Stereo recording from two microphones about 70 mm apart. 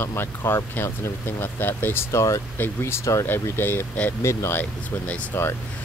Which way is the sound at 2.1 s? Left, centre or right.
Left.